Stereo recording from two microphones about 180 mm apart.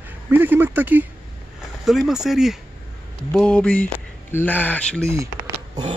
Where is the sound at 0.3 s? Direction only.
10° right (ahead or behind); by 5.0 s 5° left (ahead or behind).